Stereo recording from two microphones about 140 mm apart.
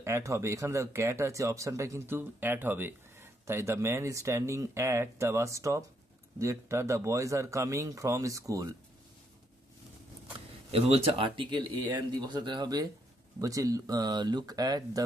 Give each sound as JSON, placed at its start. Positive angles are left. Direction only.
{"t": 0.0, "sound": "speech", "side_deg": -20}
{"t": 10.7, "sound": "speech", "side_deg": -45}